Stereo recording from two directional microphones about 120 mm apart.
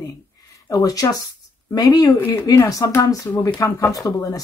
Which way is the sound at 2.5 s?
30° left (ahead or behind).